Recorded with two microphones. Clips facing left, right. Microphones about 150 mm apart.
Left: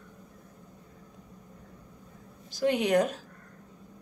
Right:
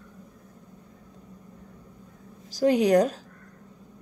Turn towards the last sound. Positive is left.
turn(degrees=-35)  # may be behind; listen again after turning